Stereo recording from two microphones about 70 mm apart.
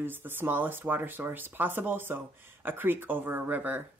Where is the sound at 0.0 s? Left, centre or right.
Right.